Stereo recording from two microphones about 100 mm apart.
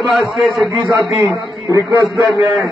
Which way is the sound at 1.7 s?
35° right (ahead or behind).